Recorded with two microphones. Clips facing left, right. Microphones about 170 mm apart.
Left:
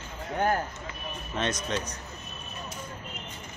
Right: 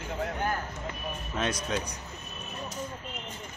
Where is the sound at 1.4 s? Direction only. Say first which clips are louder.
Left 1 dB; 5° right (ahead or behind).